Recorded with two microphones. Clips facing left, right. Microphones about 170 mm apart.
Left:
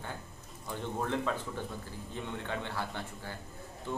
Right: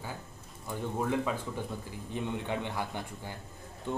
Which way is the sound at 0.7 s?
10° right (ahead or behind).